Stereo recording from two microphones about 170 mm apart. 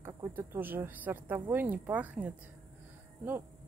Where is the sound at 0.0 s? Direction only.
15° right (ahead or behind).